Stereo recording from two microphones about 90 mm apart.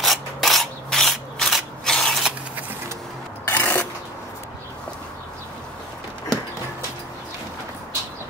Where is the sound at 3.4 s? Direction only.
20° left (ahead or behind).